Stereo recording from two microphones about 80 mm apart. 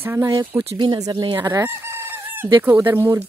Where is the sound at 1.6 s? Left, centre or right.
Right.